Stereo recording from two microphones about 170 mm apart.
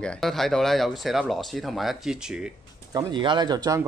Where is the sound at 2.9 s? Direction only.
25° right (ahead or behind).